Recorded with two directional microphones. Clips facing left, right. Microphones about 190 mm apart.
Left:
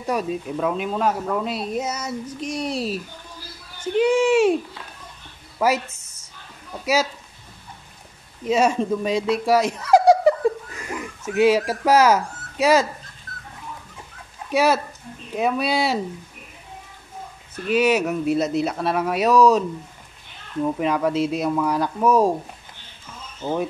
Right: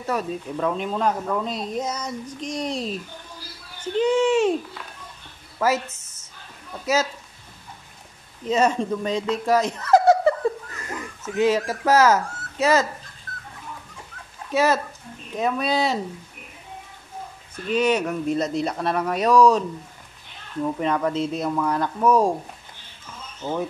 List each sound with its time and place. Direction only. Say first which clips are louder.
0.0 s speech: left 2 dB; 10° left (ahead or behind)
5.9 s a sound: right 2 dB; 5° right (ahead or behind)
8.5 s speech: left 2 dB; 10° left (ahead or behind)
14.5 s speech: left 1 dB; 10° left (ahead or behind)
17.6 s speech: left 2 dB; 5° left (ahead or behind)
20.8 s speech: left 2 dB; 10° left (ahead or behind)
23.4 s speech: left 2 dB; 15° left (ahead or behind)